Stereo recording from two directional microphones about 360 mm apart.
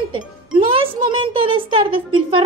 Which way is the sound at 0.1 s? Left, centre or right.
Centre.